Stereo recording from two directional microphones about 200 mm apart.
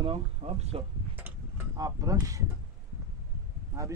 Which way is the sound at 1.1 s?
10° right (ahead or behind).